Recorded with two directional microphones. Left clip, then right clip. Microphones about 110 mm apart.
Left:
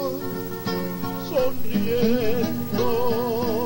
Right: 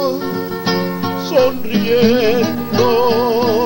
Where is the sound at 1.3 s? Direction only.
35° right (ahead or behind).